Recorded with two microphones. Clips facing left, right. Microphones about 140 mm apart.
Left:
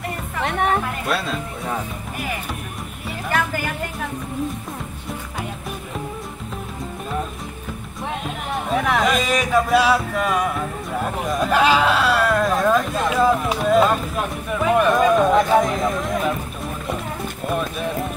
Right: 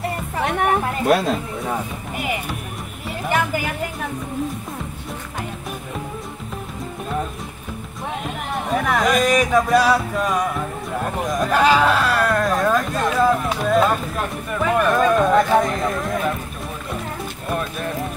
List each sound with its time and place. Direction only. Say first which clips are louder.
0.5 s music: right 1 dB; 5° right (ahead or behind)
1.0 s speech: right 6 dB; 45° right (ahead or behind)
3.3 s speech: right 1 dB; 5° right (ahead or behind)
8.6 s speech: even; centre (ahead or behind)
17.5 s music: left 1 dB; centre (ahead or behind)